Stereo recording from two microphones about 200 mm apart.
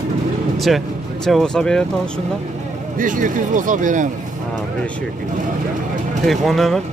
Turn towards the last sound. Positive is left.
turn(degrees=0)  # may be behind; listen again after turning